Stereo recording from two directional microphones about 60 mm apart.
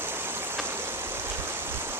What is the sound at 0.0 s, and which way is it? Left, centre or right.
Stream, right.